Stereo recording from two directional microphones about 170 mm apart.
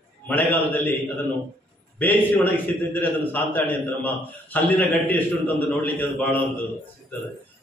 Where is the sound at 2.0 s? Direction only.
10° left (ahead or behind).